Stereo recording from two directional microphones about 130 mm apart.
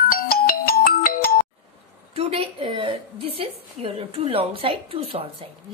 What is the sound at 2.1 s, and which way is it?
A woman's voice, 50° right (ahead or behind).